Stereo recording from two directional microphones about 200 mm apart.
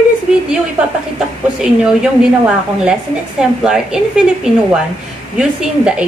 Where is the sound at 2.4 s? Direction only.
5° right (ahead or behind).